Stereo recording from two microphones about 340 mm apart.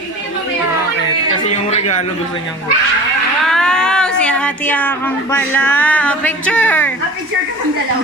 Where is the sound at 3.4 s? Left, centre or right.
Centre.